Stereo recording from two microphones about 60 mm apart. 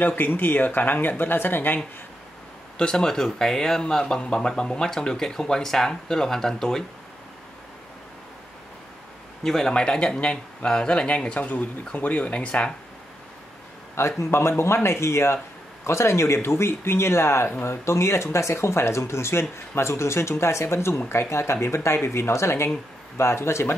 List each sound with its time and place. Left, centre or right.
0.0 s speech: left
2.8 s speech: centre
9.4 s speech: centre
13.9 s speech: left